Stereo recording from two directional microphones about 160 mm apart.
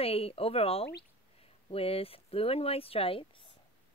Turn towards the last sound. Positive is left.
turn(degrees=35)  # may be behind; listen again after turning